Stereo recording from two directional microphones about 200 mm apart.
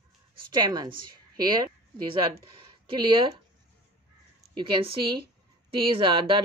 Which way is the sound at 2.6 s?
25° right (ahead or behind).